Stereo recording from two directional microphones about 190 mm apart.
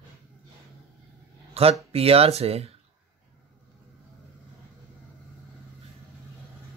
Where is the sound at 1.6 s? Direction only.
30° right (ahead or behind).